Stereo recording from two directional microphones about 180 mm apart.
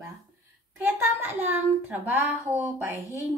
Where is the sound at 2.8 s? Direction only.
15° right (ahead or behind).